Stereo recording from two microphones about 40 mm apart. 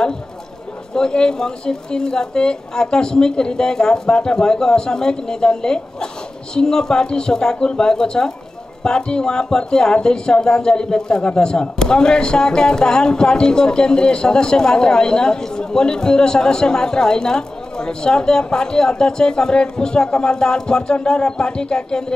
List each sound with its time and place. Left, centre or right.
0.9 s a man's voice: centre